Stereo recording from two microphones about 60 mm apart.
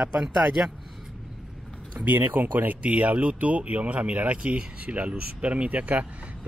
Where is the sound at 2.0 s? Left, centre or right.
Right.